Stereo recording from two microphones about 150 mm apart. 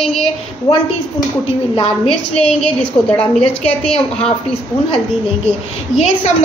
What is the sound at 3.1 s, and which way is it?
Speech, 5° left (ahead or behind).